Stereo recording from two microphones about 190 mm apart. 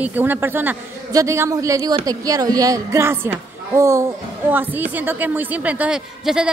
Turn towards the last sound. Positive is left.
turn(degrees=-5)  # may be behind; listen again after turning